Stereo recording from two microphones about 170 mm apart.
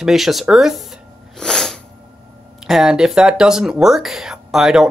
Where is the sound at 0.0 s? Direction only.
Centre (ahead or behind).